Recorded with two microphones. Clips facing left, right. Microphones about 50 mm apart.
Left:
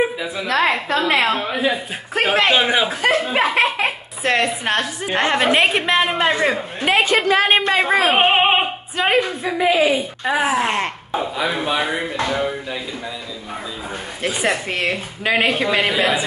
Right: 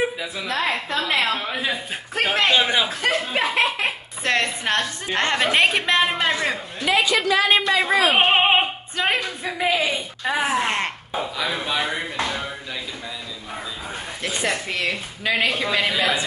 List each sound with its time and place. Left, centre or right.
0.9 s speech: left
1.2 s speech: centre
3.3 s a sound: left
4.2 s speech: centre; by 6.9 s left
6.9 s a woman's voice: left
8.2 s speech: centre
11.1 s speech: centre
14.2 s speech: centre
14.7 s speech: left
15.9 s speech: centre